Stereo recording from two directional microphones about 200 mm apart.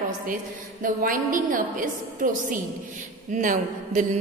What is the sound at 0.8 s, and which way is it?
A woman's voice, 45° right (ahead or behind).